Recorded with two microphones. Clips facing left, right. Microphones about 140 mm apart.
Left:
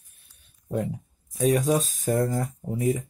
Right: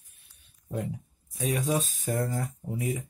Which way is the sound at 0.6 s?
55° left (ahead or behind).